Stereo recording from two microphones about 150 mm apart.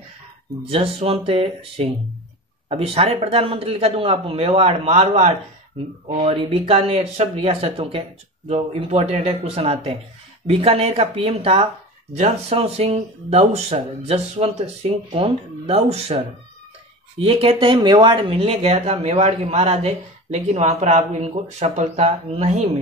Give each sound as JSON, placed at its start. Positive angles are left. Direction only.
{"t": 0.7, "sound": "a man's voice", "side_deg": -40}
{"t": 17.2, "sound": "speech", "side_deg": -40}